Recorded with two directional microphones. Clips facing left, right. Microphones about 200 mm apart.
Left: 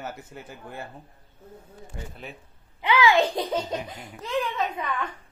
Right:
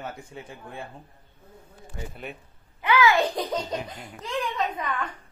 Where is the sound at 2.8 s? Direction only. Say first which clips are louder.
Left 1 dB; 15° left (ahead or behind).